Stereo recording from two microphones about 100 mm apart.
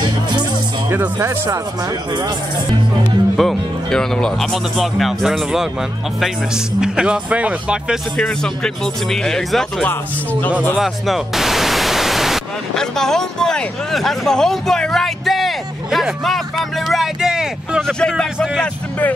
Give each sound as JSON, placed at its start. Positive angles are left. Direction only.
{"t": 0.8, "sound": "speech", "side_deg": -20}
{"t": 1.2, "sound": "speech", "side_deg": -35}
{"t": 3.3, "sound": "speech", "side_deg": 5}
{"t": 8.2, "sound": "speech", "side_deg": 5}
{"t": 17.8, "sound": "speech", "side_deg": 5}